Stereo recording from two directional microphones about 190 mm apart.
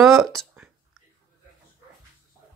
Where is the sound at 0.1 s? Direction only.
Centre (ahead or behind).